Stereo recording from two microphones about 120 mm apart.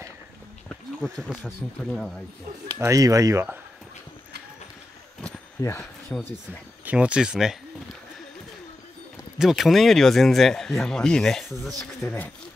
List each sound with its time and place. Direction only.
0.7 s a sound: 5° left (ahead or behind)
1.4 s speech: 5° left (ahead or behind)
2.8 s speech: 30° right (ahead or behind)
5.6 s speech: 25° left (ahead or behind)
6.1 s speech: 15° left (ahead or behind)
6.8 s speech: 10° right (ahead or behind)
9.4 s speech: centre (ahead or behind)